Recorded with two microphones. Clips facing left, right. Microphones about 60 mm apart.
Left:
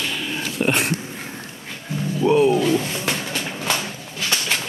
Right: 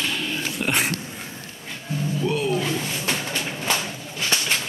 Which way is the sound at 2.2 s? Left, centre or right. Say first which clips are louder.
Left 9 dB; left.